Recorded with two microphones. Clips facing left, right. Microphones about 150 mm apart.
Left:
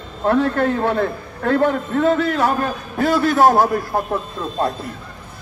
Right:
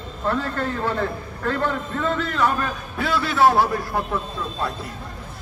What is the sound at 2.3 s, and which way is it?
A man's voice, 40° left (ahead or behind).